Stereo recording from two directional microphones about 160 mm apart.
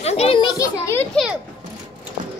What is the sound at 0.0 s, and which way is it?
Children playing, 40° left (ahead or behind).